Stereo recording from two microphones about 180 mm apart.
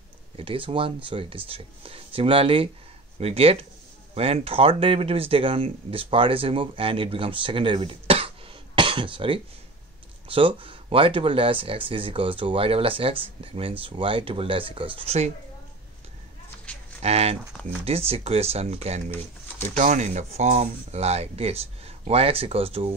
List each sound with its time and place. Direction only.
0.4 s speech: 30° right (ahead or behind)
16.7 s a sound: 5° left (ahead or behind)
17.0 s speech: 35° right (ahead or behind)
19.0 s speech: 10° left (ahead or behind)
19.7 s speech: 45° right (ahead or behind)